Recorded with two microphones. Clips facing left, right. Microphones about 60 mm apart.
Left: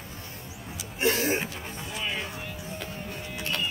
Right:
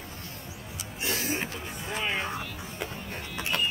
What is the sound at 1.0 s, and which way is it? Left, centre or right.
Music, left.